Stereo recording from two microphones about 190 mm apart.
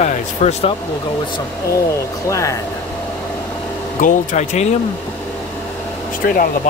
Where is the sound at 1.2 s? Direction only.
20° left (ahead or behind).